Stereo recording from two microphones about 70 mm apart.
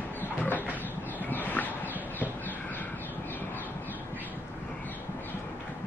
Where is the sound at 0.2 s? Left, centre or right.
Left.